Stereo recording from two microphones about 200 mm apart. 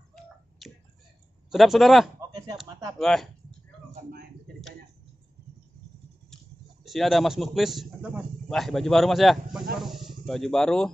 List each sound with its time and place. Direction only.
0.6 s finger snapping: centre (ahead or behind)
1.5 s speech: centre (ahead or behind)
2.6 s a sound: 20° right (ahead or behind)
3.0 s speech: centre (ahead or behind)
3.9 s a sound: 50° right (ahead or behind)
6.3 s speech: centre (ahead or behind)